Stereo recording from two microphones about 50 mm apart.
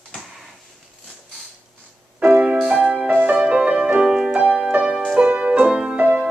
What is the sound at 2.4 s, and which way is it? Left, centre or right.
Music, right.